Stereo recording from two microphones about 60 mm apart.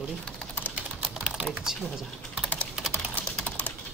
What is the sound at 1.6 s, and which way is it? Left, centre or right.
Speech, centre.